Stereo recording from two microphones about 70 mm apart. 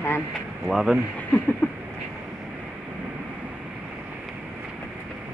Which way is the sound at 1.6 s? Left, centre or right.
Left.